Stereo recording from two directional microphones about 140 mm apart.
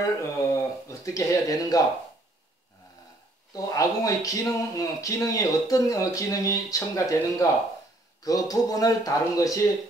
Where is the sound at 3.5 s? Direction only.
25° left (ahead or behind).